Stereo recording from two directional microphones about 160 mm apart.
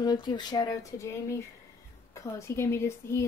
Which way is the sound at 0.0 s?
25° left (ahead or behind).